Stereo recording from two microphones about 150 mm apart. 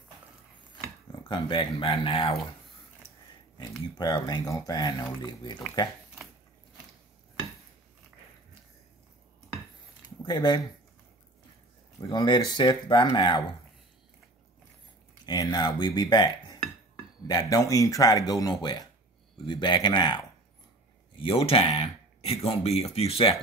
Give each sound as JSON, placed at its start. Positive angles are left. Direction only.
{"t": 1.3, "sound": "speech", "side_deg": 30}
{"t": 3.5, "sound": "speech", "side_deg": 30}
{"t": 10.2, "sound": "speech", "side_deg": 30}
{"t": 12.1, "sound": "speech", "side_deg": 30}
{"t": 15.2, "sound": "speech", "side_deg": 25}
{"t": 21.2, "sound": "speech", "side_deg": 40}